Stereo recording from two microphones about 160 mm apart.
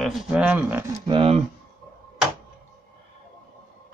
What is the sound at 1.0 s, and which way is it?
Speech, 35° right (ahead or behind).